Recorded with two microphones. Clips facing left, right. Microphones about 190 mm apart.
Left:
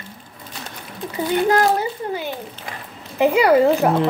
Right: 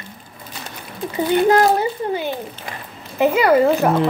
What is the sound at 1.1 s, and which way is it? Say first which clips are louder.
A child's voice: right 3 dB; 25° right (ahead or behind).